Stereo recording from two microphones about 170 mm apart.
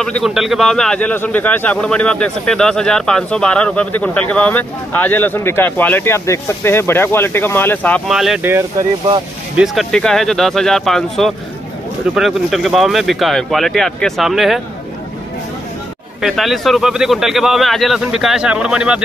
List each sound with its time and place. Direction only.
0.0 s a man's voice: centre (ahead or behind)
8.1 s a man's voice: centre (ahead or behind)
8.5 s speech: 15° right (ahead or behind)
9.6 s a man's voice: centre (ahead or behind)
16.2 s a man's voice: centre (ahead or behind)